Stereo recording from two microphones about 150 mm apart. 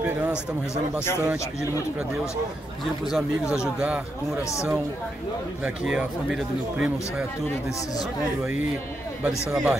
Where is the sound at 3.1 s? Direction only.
5° right (ahead or behind).